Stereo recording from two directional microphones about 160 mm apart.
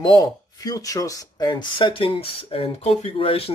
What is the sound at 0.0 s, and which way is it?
Speech, 25° left (ahead or behind).